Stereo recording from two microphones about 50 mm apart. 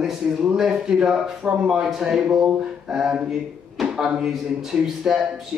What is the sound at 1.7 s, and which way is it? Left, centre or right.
A man's voice, centre.